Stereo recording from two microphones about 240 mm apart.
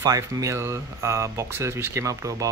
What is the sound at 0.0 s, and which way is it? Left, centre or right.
Speech, centre.